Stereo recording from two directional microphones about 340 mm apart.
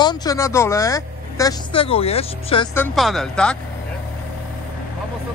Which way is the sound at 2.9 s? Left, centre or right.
Centre.